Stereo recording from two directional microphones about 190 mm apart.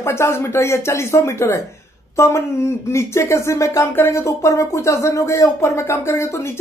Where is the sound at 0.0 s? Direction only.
15° left (ahead or behind).